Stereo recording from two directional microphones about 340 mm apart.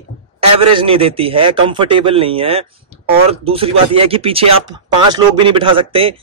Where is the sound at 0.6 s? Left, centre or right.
Centre.